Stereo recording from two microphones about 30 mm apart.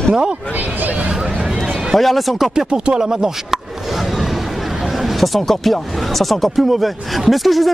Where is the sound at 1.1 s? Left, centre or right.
Centre.